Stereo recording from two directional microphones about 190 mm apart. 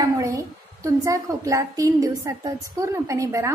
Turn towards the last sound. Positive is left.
turn(degrees=-15)  # may be behind; listen again after turning